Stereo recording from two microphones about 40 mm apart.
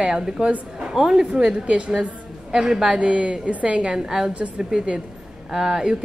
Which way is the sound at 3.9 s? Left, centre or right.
Centre.